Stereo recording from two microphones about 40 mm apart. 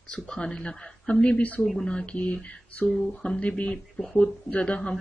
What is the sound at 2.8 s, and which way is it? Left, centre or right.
Speech, left.